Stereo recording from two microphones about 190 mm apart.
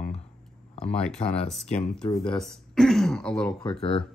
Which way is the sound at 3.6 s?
25° left (ahead or behind).